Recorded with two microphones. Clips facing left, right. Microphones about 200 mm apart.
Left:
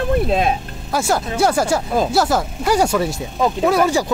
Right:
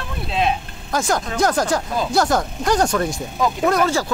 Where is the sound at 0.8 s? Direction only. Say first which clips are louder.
Left 2 dB; 5° left (ahead or behind).